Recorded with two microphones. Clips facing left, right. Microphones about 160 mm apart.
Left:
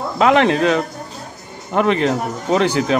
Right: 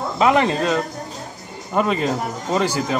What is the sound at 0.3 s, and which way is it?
Speech, 70° left (ahead or behind).